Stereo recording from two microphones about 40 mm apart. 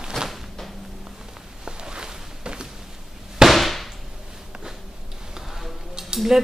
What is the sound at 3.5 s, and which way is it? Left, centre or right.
Firecracker, centre.